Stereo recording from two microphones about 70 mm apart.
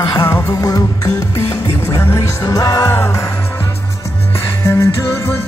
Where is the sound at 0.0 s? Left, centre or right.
Left.